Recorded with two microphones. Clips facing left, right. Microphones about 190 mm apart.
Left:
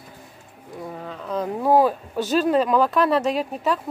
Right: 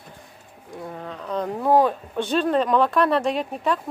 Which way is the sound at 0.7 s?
Centre (ahead or behind).